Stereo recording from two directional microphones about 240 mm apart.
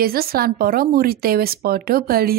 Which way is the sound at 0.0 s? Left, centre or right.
Right.